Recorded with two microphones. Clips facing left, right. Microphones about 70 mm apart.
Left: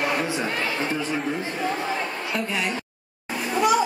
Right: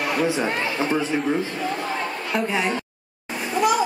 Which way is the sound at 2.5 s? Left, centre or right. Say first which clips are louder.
Right 3 dB; right.